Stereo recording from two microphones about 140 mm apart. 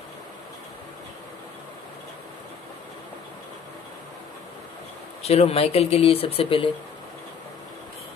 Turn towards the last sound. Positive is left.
turn(degrees=40)  # may be behind; listen again after turning